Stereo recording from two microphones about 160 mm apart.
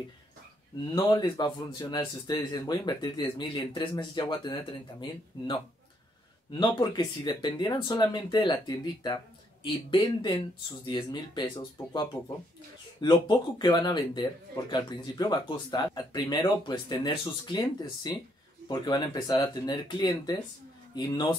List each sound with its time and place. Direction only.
0.9 s speech: 30° left (ahead or behind)
6.5 s speech: 25° left (ahead or behind)